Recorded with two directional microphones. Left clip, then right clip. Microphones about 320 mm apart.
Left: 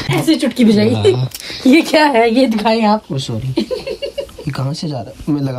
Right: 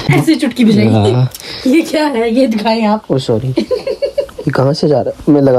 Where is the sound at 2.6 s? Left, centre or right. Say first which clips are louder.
Even; left.